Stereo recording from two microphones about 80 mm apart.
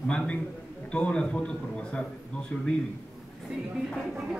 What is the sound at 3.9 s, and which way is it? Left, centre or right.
Speech, centre.